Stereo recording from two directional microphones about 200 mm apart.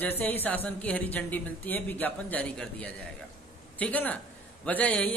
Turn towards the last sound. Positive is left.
turn(degrees=5)  # may be behind; listen again after turning